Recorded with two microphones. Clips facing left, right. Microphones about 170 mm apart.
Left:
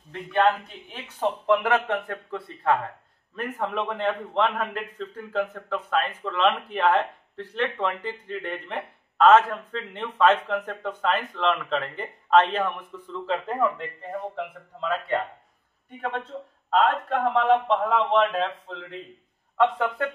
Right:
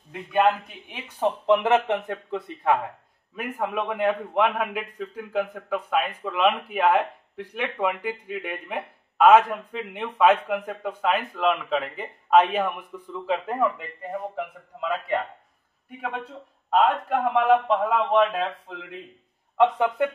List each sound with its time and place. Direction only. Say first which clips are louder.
0.1 s a man's voice: right 1 dB; 10° right (ahead or behind)